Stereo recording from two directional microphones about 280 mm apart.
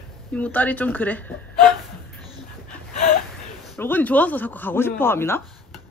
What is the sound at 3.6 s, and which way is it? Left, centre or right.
Speech, centre.